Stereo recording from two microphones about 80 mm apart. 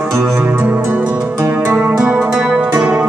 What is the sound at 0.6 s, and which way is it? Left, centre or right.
Music, right.